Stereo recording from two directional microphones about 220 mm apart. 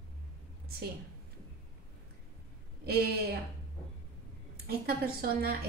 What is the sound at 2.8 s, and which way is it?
Speech, 45° right (ahead or behind).